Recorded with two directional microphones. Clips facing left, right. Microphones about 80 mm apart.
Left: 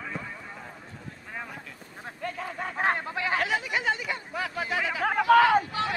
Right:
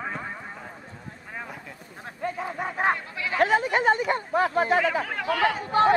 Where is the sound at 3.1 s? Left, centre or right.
Left.